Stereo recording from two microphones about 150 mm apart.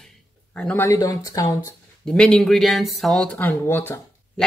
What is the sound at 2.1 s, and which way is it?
Speech, 5° left (ahead or behind).